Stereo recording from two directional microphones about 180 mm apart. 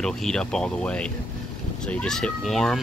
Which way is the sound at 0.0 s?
5° left (ahead or behind).